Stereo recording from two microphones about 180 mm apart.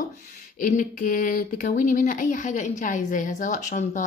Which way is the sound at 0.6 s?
50° left (ahead or behind).